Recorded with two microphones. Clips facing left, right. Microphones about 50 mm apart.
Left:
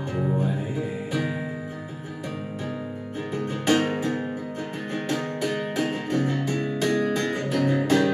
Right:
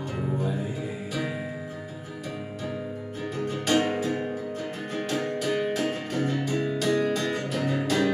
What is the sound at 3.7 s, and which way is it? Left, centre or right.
Music, centre.